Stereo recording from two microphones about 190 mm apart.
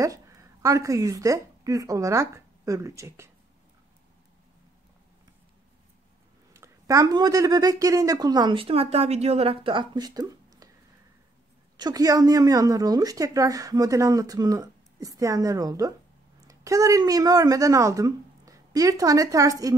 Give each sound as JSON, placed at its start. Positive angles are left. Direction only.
{"t": 0.0, "sound": "a woman's voice", "side_deg": -15}
{"t": 6.5, "sound": "speech", "side_deg": -15}
{"t": 11.7, "sound": "a woman's voice", "side_deg": -20}